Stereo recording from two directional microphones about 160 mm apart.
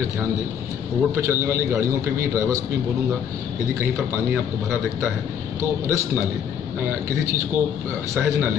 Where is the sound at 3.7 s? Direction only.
15° right (ahead or behind).